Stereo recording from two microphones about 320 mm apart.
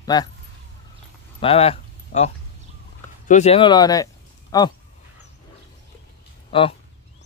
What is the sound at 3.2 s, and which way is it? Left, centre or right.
Speech, left.